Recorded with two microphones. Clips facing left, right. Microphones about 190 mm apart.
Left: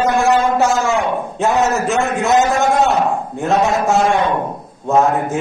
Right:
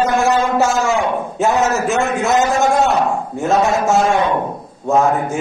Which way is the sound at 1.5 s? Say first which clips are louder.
Left 2 dB; 15° left (ahead or behind).